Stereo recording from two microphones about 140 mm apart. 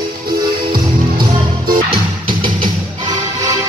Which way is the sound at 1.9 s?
35° right (ahead or behind).